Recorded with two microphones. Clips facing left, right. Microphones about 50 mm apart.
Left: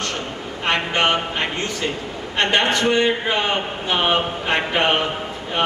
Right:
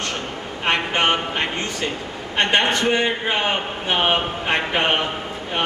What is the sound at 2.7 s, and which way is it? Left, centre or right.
A man's voice, right.